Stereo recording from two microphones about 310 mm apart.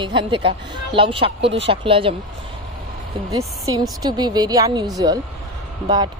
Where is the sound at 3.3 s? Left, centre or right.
Centre.